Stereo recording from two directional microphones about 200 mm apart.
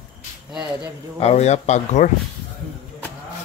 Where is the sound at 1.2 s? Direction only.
30° left (ahead or behind).